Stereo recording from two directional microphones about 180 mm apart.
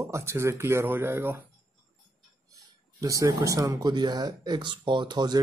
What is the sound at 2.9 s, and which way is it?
Speech, 20° right (ahead or behind).